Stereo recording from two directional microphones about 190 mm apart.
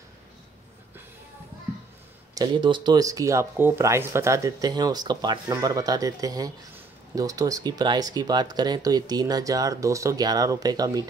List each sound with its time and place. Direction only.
2.3 s speech: 25° right (ahead or behind)